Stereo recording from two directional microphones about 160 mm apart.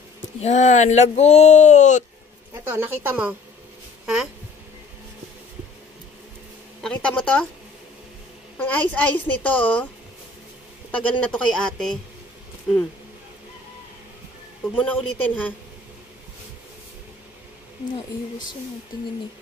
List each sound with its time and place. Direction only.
0.4 s speech: 45° left (ahead or behind)
2.7 s speech: 10° right (ahead or behind)
6.8 s a child's voice: 5° left (ahead or behind)
8.5 s a child's voice: 10° left (ahead or behind)
10.9 s speech: 5° left (ahead or behind)
14.8 s a child's voice: 10° left (ahead or behind)